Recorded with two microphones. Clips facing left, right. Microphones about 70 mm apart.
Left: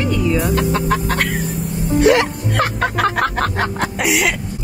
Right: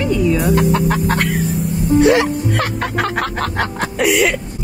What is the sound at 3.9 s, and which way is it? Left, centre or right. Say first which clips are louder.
Speech: right 5 dB; centre.